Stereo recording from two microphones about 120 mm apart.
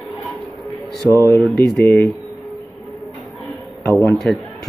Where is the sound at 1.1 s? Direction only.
20° left (ahead or behind).